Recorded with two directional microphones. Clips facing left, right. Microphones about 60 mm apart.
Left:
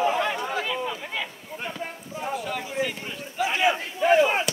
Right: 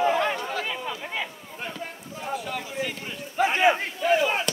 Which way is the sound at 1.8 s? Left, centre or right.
Centre.